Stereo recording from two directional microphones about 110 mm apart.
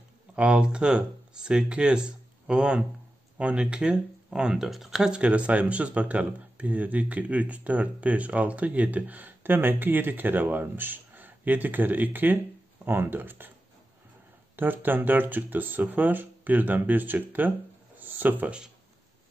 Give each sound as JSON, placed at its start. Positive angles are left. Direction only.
{"t": 0.4, "sound": "speech", "side_deg": -10}
{"t": 14.6, "sound": "speech", "side_deg": -15}